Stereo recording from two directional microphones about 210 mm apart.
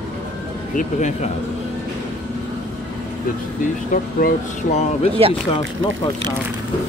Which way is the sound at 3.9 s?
40° left (ahead or behind).